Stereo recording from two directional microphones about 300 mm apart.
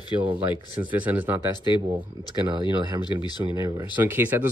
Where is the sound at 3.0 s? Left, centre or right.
Centre.